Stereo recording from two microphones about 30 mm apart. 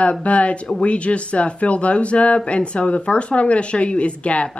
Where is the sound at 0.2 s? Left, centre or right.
Left.